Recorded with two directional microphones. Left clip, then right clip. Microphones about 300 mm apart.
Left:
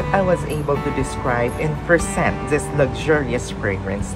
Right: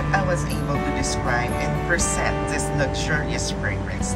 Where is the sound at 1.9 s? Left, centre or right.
Left.